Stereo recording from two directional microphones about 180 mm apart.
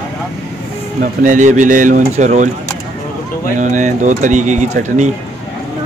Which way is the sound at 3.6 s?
45° right (ahead or behind).